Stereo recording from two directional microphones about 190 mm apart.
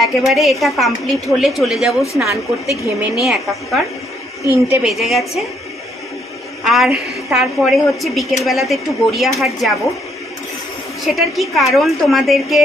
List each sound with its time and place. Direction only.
0.0 s a woman's voice: centre (ahead or behind)
4.4 s a woman's voice: 15° right (ahead or behind)
4.8 s a woman's voice: centre (ahead or behind)
6.6 s a woman's voice: centre (ahead or behind)
11.1 s a woman's voice: centre (ahead or behind)